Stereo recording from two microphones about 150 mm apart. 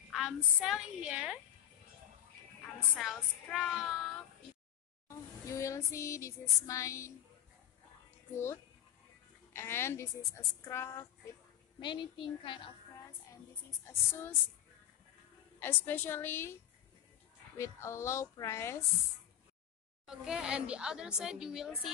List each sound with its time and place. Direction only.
0.1 s a woman's voice: centre (ahead or behind)
3.0 s a woman's voice: centre (ahead or behind)
5.0 s a sound: 20° left (ahead or behind)
6.6 s speech: 20° left (ahead or behind)
8.3 s speech: 15° left (ahead or behind)
11.8 s a woman's voice: 30° left (ahead or behind)
13.3 s speech: 20° left (ahead or behind)
15.6 s speech: 15° left (ahead or behind)
17.6 s speech: 20° left (ahead or behind)
20.1 s a woman's voice: 5° right (ahead or behind)